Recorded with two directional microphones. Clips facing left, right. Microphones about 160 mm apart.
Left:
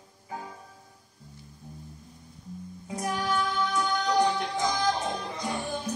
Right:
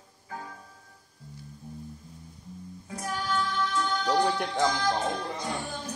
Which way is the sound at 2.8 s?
15° left (ahead or behind).